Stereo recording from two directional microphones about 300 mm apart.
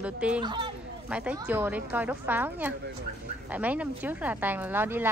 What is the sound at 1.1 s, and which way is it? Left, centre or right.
Speech, centre.